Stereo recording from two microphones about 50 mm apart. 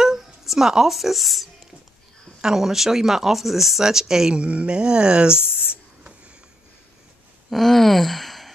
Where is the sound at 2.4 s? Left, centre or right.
Centre.